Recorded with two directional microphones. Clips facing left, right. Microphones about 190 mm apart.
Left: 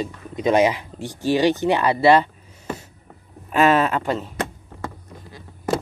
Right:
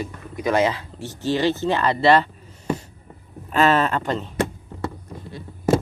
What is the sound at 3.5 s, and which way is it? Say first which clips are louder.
Speech: left 1 dB; 10° left (ahead or behind).